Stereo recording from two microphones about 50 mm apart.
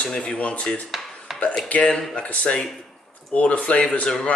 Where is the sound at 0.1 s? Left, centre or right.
Centre.